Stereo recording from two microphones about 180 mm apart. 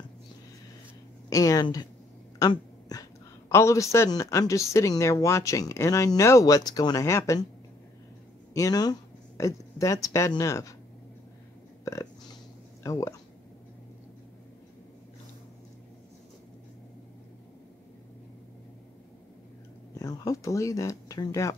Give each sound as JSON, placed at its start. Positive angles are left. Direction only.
{"t": 1.3, "sound": "a woman's voice", "side_deg": 20}
{"t": 8.5, "sound": "speech", "side_deg": 20}
{"t": 11.8, "sound": "burping", "side_deg": 20}
{"t": 12.8, "sound": "speech", "side_deg": 15}
{"t": 20.0, "sound": "speech", "side_deg": 20}